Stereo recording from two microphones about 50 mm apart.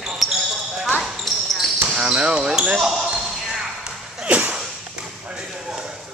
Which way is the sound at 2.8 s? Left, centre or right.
Centre.